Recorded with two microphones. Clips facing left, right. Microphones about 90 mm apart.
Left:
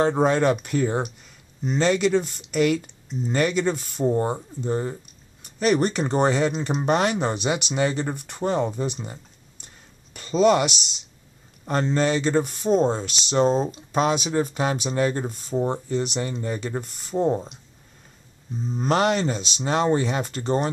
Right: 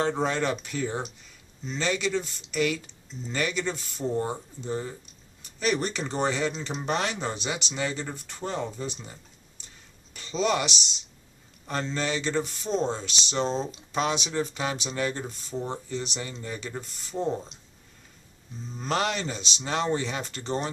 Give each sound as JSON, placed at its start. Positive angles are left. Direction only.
{"t": 0.2, "sound": "speech", "side_deg": 50}
{"t": 11.6, "sound": "speech", "side_deg": 45}
{"t": 18.8, "sound": "speech", "side_deg": 45}